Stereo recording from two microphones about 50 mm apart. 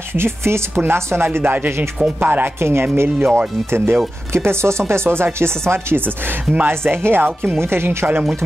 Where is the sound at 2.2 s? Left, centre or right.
Right.